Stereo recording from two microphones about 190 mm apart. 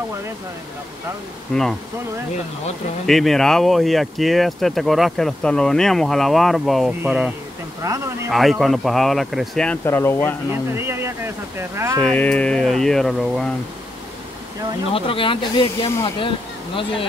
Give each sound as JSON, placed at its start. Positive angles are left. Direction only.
{"t": 1.5, "sound": "speech", "side_deg": 0}
{"t": 3.1, "sound": "speech", "side_deg": 0}
{"t": 7.8, "sound": "speech", "side_deg": -15}
{"t": 8.3, "sound": "speech", "side_deg": 0}
{"t": 10.7, "sound": "speech", "side_deg": -15}
{"t": 12.0, "sound": "speech", "side_deg": 5}
{"t": 14.9, "sound": "speech", "side_deg": 30}